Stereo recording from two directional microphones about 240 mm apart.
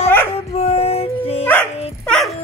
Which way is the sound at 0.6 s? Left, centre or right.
Left.